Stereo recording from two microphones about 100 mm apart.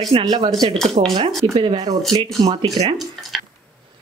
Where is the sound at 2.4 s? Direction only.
55° right (ahead or behind).